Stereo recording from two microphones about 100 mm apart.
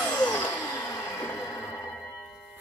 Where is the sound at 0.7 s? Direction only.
20° left (ahead or behind).